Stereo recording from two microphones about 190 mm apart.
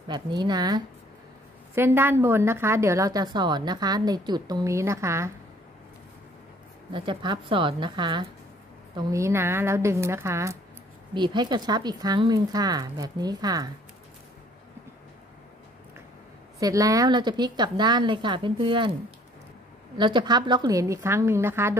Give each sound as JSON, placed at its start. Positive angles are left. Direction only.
{"t": 0.1, "sound": "a woman's voice", "side_deg": -25}
{"t": 6.9, "sound": "a woman's voice", "side_deg": -25}
{"t": 16.5, "sound": "a woman's voice", "side_deg": -20}